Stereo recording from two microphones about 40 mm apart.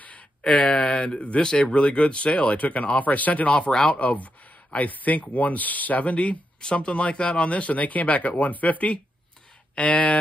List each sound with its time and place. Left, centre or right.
0.4 s speech: left
3.7 s speech: left
4.0 s speech: left